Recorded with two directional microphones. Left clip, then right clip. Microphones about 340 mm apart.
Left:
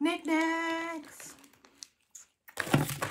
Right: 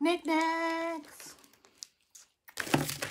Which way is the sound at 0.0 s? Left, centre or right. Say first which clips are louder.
Right 1 dB; centre.